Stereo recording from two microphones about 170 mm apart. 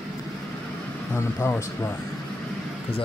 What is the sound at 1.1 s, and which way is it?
Speech, 15° left (ahead or behind).